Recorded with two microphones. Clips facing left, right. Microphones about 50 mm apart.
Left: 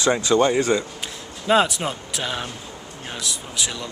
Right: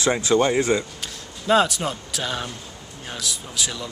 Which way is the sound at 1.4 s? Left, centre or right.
Centre.